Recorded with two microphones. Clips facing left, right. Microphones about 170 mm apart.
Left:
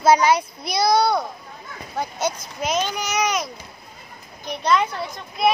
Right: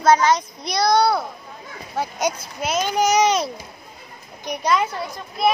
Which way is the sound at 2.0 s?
15° right (ahead or behind).